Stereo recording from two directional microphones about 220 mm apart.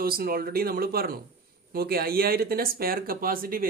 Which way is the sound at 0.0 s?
40° right (ahead or behind).